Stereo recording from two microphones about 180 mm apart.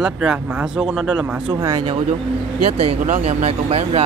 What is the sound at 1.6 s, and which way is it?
Speech, 20° right (ahead or behind).